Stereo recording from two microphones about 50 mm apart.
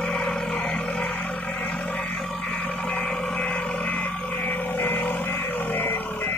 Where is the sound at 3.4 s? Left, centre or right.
Left.